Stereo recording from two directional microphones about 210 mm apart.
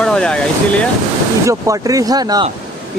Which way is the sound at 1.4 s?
15° right (ahead or behind).